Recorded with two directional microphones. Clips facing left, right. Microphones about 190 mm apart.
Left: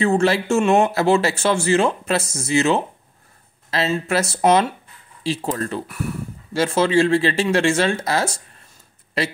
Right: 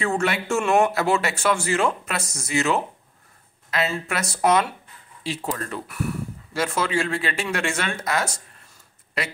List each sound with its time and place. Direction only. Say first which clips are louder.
0.0 s speech: left 6 dB; 30° left (ahead or behind)